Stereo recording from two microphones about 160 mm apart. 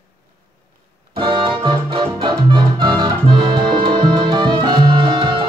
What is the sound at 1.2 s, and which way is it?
Music, 30° right (ahead or behind).